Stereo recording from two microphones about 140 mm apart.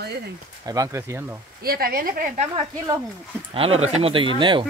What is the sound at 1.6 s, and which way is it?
Speech, 90° right.